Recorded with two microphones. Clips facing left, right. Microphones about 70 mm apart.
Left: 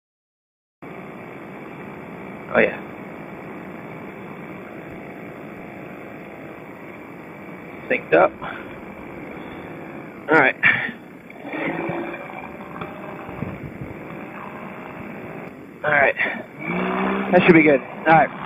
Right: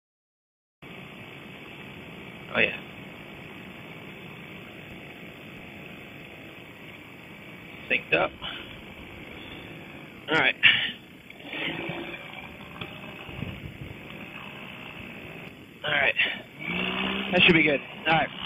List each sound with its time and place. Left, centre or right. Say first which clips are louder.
2.5 s speech: left 9 dB; left
7.9 s speech: left 10 dB; left
10.2 s speech: left 8 dB; left
11.4 s boat: left 9 dB; left
12.7 s a sound: left 8 dB; left
15.8 s vehicle: left 8 dB; left